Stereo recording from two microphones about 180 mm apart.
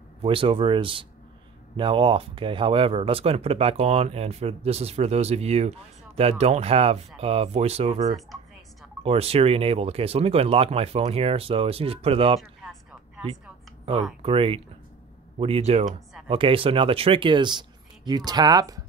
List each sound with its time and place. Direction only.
0.2 s speech: 30° right (ahead or behind)
14.2 s speech: 30° right (ahead or behind)